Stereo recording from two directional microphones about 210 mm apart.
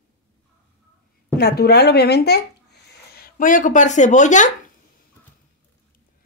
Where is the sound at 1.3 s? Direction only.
50° left (ahead or behind).